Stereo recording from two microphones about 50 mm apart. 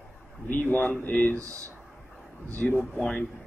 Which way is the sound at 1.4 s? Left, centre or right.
Right.